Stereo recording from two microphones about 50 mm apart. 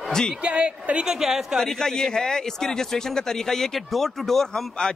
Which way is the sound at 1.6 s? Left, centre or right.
Centre.